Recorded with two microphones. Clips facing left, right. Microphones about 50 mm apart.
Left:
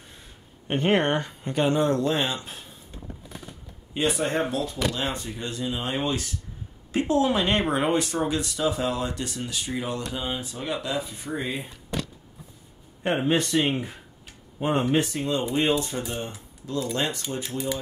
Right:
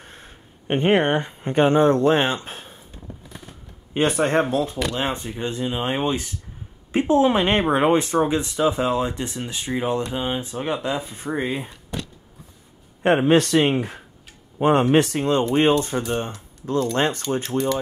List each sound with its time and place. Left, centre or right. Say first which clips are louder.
0.0 s a sound: right 5 dB; right
0.7 s speech: right 4 dB; right
3.9 s speech: right 6 dB; right
4.5 s speech: right 4 dB; right
13.0 s speech: right 7 dB; right
15.9 s speech: right 6 dB; right